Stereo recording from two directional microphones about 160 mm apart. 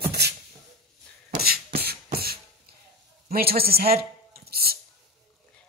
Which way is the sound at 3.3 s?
70° right (ahead or behind).